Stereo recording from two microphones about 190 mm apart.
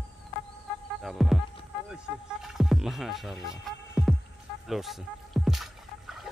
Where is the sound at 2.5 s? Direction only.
Centre (ahead or behind).